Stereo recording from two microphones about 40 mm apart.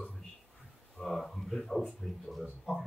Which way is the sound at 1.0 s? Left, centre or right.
Centre.